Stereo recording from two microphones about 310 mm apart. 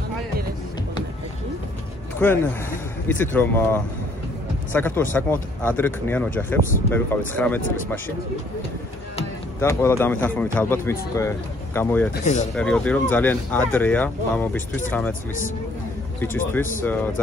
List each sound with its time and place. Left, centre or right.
2.1 s speech: centre
9.6 s speech: centre
12.1 s speech: left
12.5 s speech: centre
16.2 s speech: centre